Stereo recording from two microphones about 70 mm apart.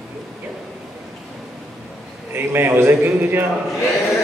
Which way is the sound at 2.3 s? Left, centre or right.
Right.